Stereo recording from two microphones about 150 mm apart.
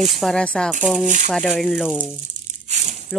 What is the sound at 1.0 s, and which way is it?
Speech, 55° right (ahead or behind).